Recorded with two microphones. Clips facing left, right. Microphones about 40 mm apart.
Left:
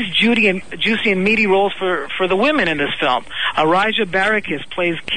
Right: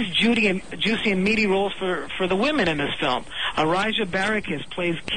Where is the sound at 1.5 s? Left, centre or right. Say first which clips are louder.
Left 7 dB; left.